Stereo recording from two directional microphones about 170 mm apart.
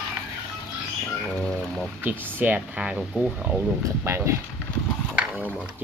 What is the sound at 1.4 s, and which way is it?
Speech, 5° left (ahead or behind).